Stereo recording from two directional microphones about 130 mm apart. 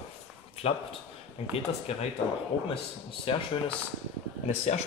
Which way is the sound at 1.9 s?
50° left (ahead or behind).